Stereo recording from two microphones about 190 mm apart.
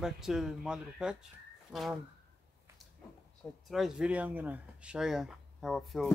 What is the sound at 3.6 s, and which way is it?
Speech, centre (ahead or behind).